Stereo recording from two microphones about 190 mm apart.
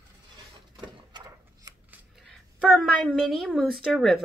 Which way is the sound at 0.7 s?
25° right (ahead or behind).